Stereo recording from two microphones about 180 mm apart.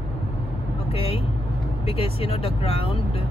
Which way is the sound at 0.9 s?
30° left (ahead or behind).